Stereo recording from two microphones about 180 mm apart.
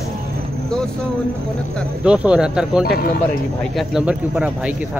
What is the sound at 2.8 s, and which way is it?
Speech, 60° left (ahead or behind).